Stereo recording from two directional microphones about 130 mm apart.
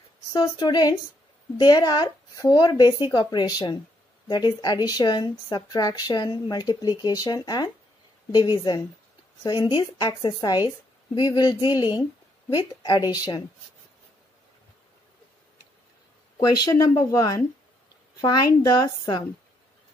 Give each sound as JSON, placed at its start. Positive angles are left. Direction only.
{"t": 0.3, "sound": "a woman's voice", "side_deg": 35}
{"t": 16.5, "sound": "a woman's voice", "side_deg": 30}